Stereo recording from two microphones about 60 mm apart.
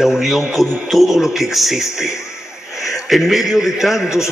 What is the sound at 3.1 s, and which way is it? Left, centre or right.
Speech, centre.